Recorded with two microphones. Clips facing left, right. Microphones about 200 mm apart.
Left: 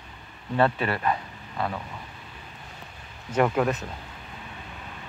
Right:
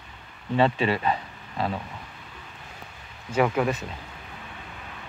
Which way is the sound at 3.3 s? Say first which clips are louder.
Even; centre (ahead or behind).